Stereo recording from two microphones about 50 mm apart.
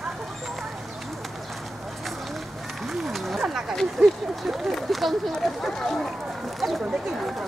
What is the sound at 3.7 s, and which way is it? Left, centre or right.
Speech, centre.